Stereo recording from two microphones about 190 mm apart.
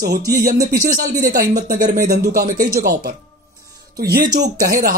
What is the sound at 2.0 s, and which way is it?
Speech, 50° right (ahead or behind).